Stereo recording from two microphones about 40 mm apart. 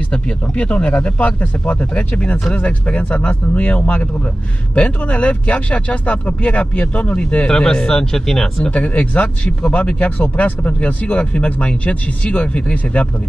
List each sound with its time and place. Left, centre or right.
0.1 s speech: left
7.2 s speech: left
8.6 s speech: left